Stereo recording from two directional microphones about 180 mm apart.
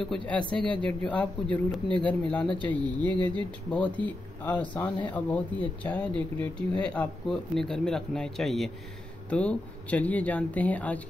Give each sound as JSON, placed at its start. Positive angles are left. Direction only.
{"t": 0.3, "sound": "speech", "side_deg": 5}
{"t": 3.1, "sound": "a sound", "side_deg": -25}
{"t": 3.7, "sound": "speech", "side_deg": 10}